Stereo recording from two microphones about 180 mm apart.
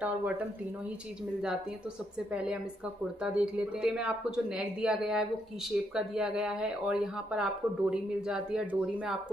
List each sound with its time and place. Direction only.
2.3 s speech: 5° right (ahead or behind)